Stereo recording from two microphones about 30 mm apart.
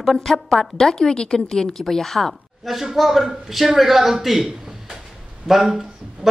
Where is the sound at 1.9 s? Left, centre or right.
Centre.